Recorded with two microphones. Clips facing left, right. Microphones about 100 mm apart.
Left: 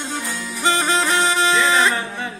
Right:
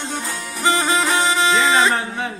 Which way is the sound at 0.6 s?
20° right (ahead or behind).